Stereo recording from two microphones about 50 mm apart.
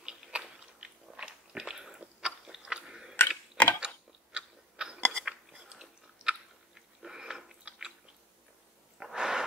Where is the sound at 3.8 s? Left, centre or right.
Centre.